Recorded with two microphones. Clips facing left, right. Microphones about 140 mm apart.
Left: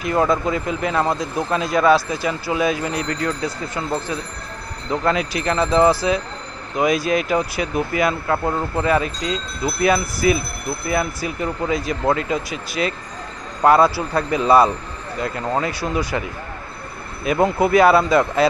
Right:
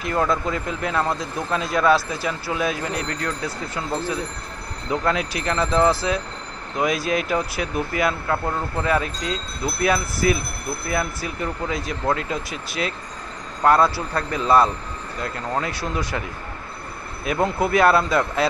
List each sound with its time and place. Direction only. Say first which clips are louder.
0.0 s speech: left 4 dB; 5° left (ahead or behind)